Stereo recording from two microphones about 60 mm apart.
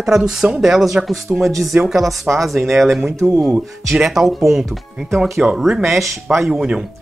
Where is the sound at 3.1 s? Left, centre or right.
Right.